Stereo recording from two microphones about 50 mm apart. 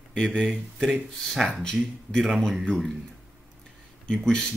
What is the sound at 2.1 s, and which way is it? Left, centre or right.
Speech, centre.